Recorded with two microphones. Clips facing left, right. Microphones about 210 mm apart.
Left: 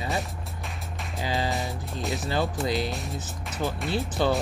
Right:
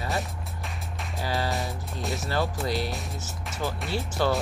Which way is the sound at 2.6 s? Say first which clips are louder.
Left 2 dB; 15° left (ahead or behind).